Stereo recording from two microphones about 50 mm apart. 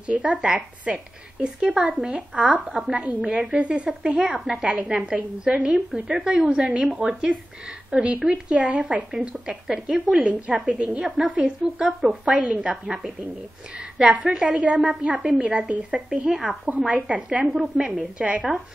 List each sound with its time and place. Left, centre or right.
0.0 s a woman's voice: right; by 10.2 s centre
10.6 s a woman's voice: right
11.1 s speech: centre
11.3 s a woman's voice: centre
12.8 s a woman's voice: centre
16.3 s speech: centre
16.8 s a woman's voice: right